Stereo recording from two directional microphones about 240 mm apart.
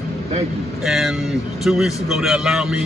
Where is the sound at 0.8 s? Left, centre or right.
Centre.